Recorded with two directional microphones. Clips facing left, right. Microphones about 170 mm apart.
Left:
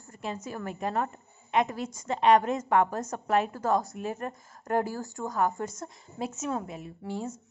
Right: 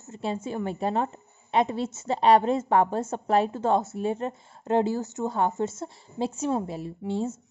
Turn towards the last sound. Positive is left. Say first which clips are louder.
# right 6 dB
turn(degrees=-25)  # may be behind; listen again after turning